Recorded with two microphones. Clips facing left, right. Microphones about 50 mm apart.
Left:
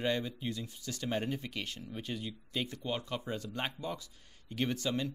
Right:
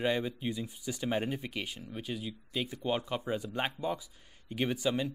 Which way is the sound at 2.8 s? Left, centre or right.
Centre.